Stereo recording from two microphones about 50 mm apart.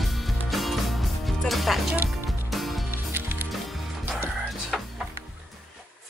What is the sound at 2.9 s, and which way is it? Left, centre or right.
Music, right.